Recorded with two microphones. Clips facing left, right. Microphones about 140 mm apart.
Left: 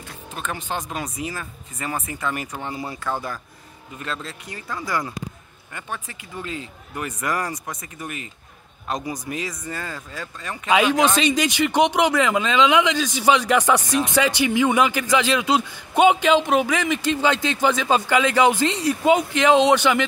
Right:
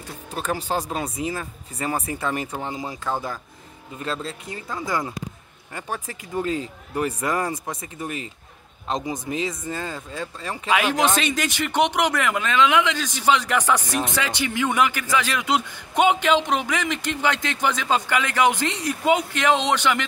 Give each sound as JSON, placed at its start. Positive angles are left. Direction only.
{"t": 0.3, "sound": "speech", "side_deg": -35}
{"t": 4.0, "sound": "speech", "side_deg": -30}
{"t": 5.8, "sound": "speech", "side_deg": -40}
{"t": 11.3, "sound": "speech", "side_deg": 15}
{"t": 18.7, "sound": "speech", "side_deg": 70}
{"t": 19.7, "sound": "speech", "side_deg": 10}